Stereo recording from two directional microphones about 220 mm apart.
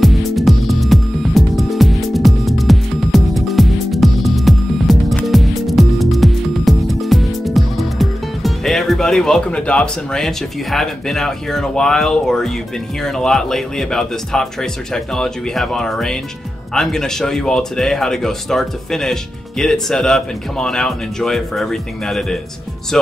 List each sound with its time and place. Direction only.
0.0 s music: centre (ahead or behind)
13.0 s speech: centre (ahead or behind)